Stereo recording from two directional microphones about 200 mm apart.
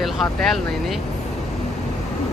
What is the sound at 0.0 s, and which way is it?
Speech, centre (ahead or behind).